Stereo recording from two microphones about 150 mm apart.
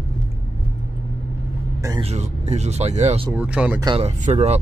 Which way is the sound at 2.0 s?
45° right (ahead or behind).